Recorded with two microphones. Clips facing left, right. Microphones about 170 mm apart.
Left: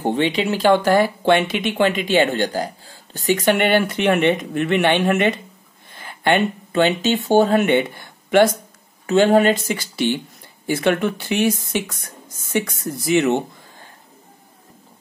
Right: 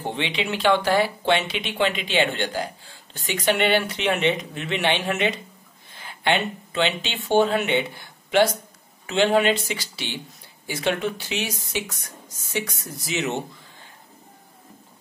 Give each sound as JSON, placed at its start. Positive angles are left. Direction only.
{"t": 0.0, "sound": "speech", "side_deg": 45}
{"t": 9.0, "sound": "speech", "side_deg": 45}